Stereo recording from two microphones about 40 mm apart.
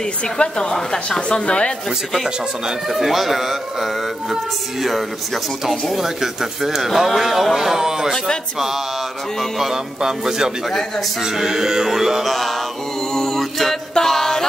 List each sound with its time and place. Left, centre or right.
0.0 s a woman's voice: centre
2.9 s speech: centre
9.9 s speech: centre
10.7 s speech: centre
11.2 s speech: centre
13.1 s a capella: centre
13.9 s music: centre